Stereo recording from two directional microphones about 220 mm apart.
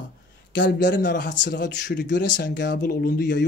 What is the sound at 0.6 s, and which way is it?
Speech, 55° left (ahead or behind).